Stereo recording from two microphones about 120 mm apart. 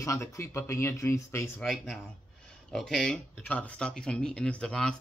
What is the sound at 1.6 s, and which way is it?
Speech, centre (ahead or behind).